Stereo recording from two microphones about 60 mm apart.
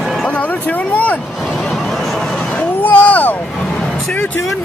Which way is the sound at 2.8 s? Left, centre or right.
Left.